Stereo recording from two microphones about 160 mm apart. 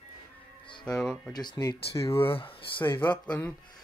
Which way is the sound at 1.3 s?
25° left (ahead or behind).